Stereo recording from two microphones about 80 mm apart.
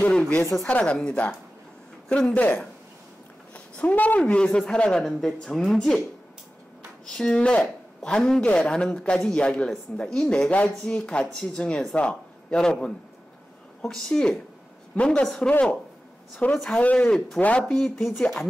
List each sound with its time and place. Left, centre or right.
0.1 s speech: centre
7.1 s a man's voice: centre
15.2 s speech: centre
16.4 s speech: centre